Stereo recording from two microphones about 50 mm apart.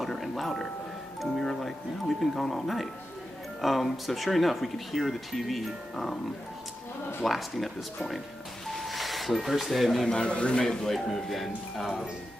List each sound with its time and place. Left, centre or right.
0.0 s a sound: centre
1.2 s speech: centre
7.2 s speech: centre
8.6 s a sound: centre
10.1 s a man's voice: centre
10.6 s speech: centre